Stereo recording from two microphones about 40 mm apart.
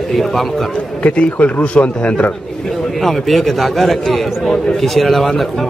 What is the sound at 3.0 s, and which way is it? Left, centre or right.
Speech, centre.